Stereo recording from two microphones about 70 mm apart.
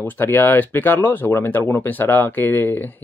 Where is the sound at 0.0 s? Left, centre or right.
Left.